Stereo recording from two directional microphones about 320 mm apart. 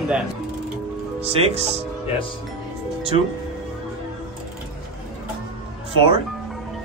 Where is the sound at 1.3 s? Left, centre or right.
Centre.